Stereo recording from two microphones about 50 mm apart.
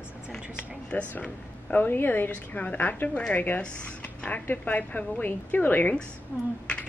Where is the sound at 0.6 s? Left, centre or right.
Left.